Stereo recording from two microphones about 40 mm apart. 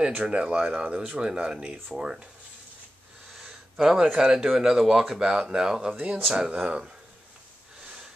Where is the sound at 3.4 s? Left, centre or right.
Centre.